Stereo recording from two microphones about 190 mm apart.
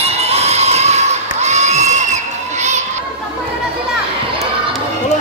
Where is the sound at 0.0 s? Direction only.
35° right (ahead or behind).